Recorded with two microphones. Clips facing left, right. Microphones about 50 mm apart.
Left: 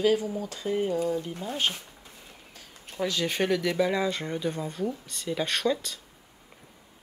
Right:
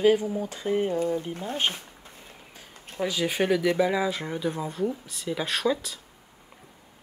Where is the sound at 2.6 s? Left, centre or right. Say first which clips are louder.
Right 1 dB; centre.